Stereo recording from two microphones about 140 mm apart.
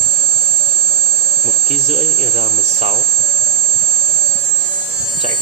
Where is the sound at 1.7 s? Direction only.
45° right (ahead or behind).